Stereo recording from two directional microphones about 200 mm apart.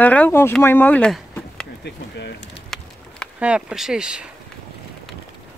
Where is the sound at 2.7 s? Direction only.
5° left (ahead or behind).